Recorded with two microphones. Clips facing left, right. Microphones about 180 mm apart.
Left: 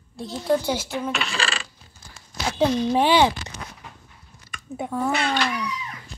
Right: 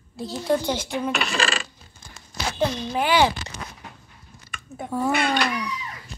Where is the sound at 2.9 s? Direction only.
30° left (ahead or behind).